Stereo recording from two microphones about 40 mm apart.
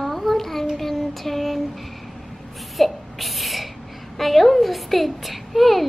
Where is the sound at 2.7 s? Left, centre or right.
Centre.